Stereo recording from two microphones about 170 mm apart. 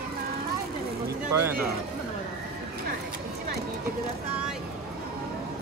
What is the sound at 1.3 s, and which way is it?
Speech, 15° right (ahead or behind).